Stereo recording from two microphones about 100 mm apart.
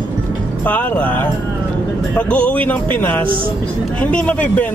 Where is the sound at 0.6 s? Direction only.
15° left (ahead or behind).